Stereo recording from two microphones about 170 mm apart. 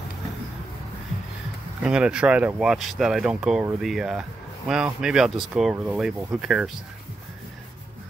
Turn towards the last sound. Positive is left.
turn(degrees=-5)  # may be behind; listen again after turning